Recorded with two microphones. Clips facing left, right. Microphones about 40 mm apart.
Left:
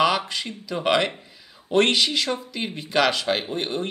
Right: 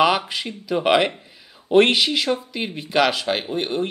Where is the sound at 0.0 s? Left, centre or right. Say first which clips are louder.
Right 3 dB; centre.